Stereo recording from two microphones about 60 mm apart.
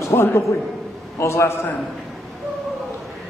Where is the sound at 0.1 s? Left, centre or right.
Left.